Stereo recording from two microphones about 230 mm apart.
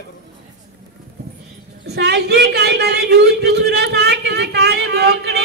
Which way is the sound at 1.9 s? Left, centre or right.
Right.